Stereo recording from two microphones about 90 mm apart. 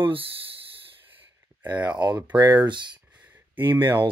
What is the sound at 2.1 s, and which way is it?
Speech, 15° right (ahead or behind).